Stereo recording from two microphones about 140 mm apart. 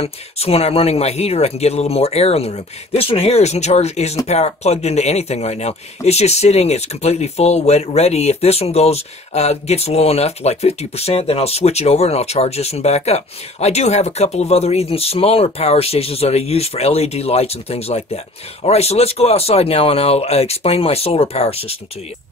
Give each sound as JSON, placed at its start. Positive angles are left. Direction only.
{"t": 0.0, "sound": "speech", "side_deg": 45}